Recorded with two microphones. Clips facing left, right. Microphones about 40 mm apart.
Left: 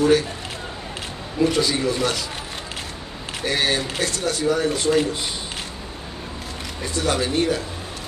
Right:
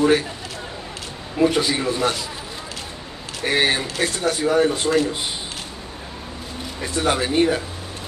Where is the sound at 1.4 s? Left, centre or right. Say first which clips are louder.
Right 1 dB; right.